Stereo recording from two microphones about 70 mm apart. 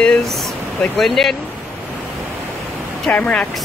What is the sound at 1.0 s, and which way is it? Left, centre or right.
Female singing, centre.